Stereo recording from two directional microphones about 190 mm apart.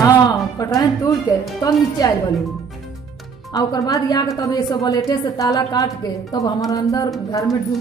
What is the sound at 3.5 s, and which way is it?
A woman's voice, 20° left (ahead or behind).